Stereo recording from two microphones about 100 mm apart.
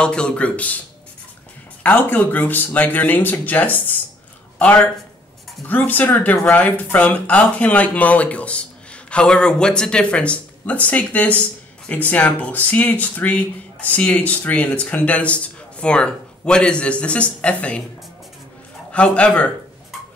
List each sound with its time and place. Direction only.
0.0 s speech: 10° left (ahead or behind)
1.8 s speech: 15° left (ahead or behind)
18.9 s speech: 10° left (ahead or behind)